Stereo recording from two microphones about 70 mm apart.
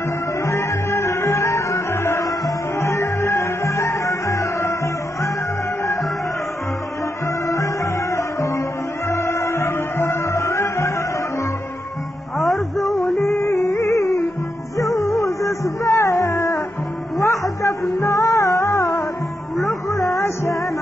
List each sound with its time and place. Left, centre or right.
0.5 s music: left
7.4 s music: left
12.4 s music: centre
13.3 s music: left
15.0 s music: centre
15.4 s music: left